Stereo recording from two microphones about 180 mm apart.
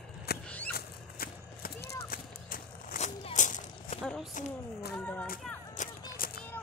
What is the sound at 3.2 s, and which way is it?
Walk, 45° left (ahead or behind).